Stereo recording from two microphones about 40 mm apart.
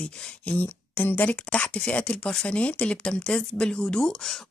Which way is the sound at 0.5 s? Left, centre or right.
Left.